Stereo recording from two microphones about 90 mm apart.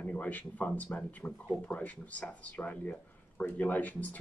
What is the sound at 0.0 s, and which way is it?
Speech, 15° left (ahead or behind).